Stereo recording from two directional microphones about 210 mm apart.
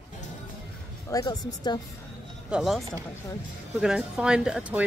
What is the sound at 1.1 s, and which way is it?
Speech, 20° left (ahead or behind).